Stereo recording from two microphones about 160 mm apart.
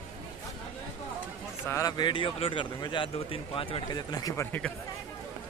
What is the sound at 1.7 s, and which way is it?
Speech, 20° left (ahead or behind).